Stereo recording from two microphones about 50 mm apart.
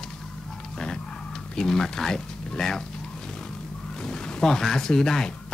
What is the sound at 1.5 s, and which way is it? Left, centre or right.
Speech, centre.